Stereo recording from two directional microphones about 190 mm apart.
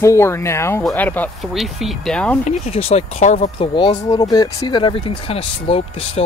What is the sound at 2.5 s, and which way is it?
Speech, 30° left (ahead or behind).